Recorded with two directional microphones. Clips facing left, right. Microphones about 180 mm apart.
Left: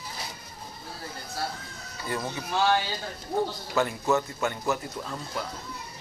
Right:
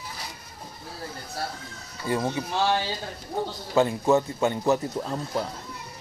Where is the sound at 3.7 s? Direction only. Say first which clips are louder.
Right 5 dB; 30° right (ahead or behind).